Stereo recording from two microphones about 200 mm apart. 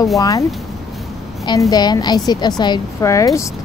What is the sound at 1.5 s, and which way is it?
A woman's voice, 20° left (ahead or behind).